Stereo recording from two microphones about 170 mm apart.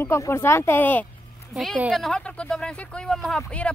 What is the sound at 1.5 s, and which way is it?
Speech, 5° right (ahead or behind).